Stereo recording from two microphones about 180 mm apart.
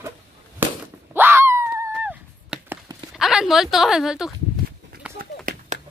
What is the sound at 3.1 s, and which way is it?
Speech, centre (ahead or behind).